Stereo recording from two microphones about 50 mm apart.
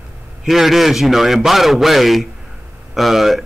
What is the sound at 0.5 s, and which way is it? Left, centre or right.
A man's voice, centre.